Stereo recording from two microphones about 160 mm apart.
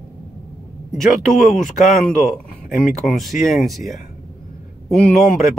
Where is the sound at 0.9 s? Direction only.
Centre (ahead or behind).